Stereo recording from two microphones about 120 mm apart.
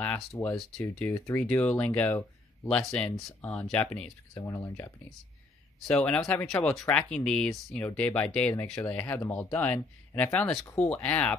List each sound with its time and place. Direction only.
0.0 s speech: 10° left (ahead or behind)
2.8 s speech: 5° left (ahead or behind)
4.3 s speech: 25° left (ahead or behind)
5.9 s speech: 10° left (ahead or behind)
6.9 s speech: 10° left (ahead or behind)